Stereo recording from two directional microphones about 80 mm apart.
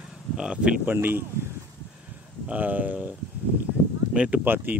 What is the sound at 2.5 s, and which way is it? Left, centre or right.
Speech, right.